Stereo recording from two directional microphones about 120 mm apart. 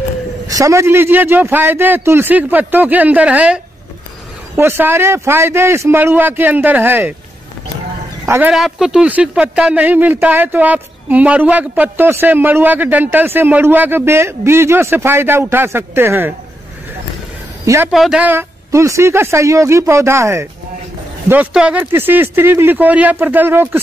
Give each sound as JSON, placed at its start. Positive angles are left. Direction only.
{"t": 0.5, "sound": "a man's voice", "side_deg": -25}
{"t": 8.3, "sound": "speech", "side_deg": -15}
{"t": 8.5, "sound": "speech", "side_deg": -5}
{"t": 17.9, "sound": "speech", "side_deg": 0}
{"t": 18.2, "sound": "a man's voice", "side_deg": -20}
{"t": 21.5, "sound": "speech", "side_deg": -10}